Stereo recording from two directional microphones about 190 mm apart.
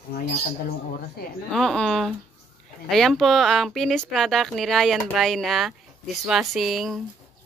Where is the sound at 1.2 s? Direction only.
55° left (ahead or behind).